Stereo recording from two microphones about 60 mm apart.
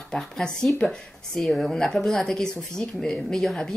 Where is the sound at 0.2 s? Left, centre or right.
Centre.